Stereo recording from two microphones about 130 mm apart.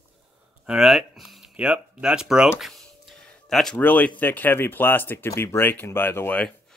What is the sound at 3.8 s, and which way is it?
Speech, 15° left (ahead or behind).